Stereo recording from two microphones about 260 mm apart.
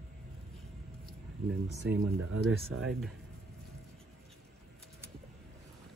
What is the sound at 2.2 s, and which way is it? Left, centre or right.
Speech, right.